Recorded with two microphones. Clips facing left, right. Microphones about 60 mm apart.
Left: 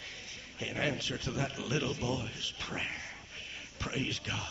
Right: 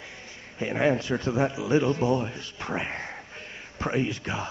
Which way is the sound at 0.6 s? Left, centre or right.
Right.